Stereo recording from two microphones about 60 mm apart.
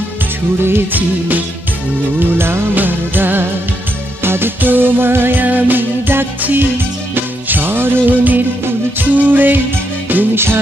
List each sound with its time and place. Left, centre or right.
0.7 s music: right